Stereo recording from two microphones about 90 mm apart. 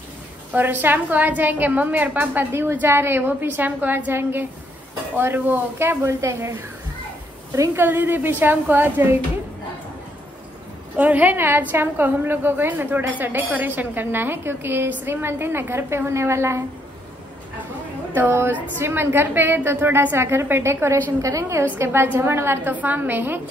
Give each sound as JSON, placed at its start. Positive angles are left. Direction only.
{"t": 0.5, "sound": "a woman's voice", "side_deg": -20}
{"t": 7.8, "sound": "a woman's voice", "side_deg": -25}
{"t": 11.0, "sound": "a woman's voice", "side_deg": -15}
{"t": 18.1, "sound": "a woman's voice", "side_deg": -25}